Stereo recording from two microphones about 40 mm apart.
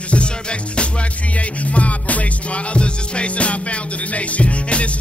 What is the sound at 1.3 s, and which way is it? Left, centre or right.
Music, left.